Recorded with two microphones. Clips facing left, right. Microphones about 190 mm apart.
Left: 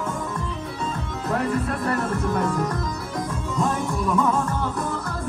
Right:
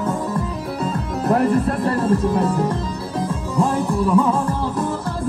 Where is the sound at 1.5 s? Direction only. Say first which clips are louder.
Right 5 dB; 30° right (ahead or behind).